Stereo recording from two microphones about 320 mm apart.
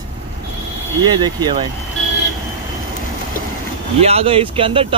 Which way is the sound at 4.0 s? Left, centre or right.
Centre.